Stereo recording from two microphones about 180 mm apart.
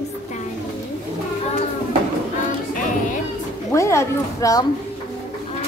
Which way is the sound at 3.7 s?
15° left (ahead or behind).